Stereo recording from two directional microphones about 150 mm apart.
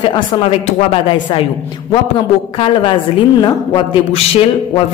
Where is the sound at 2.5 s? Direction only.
40° left (ahead or behind).